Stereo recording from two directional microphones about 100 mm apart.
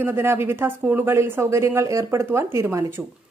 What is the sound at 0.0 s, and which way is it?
A woman's voice, 25° right (ahead or behind).